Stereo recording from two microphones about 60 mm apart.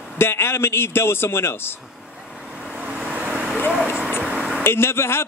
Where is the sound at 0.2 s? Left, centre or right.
Left.